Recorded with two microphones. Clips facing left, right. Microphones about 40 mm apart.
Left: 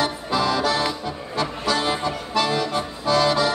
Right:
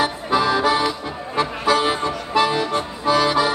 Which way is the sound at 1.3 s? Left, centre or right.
Right.